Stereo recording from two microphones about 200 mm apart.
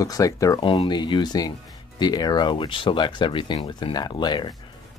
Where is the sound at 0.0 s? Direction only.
15° left (ahead or behind).